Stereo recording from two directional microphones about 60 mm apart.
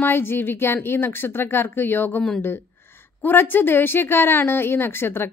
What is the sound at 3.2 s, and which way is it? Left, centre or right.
A woman's voice, left.